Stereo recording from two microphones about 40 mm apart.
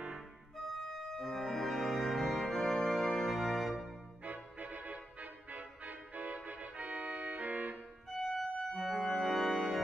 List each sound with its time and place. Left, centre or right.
0.8 s organ: centre
4.2 s music: right
8.1 s organ: centre